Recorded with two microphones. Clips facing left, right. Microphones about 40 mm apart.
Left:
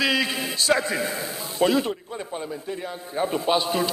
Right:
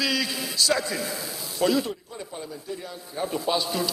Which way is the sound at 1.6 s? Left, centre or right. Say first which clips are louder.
Left 2 dB; left.